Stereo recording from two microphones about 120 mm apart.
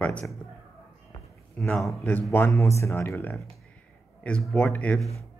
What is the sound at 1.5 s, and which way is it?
Speech, centre (ahead or behind).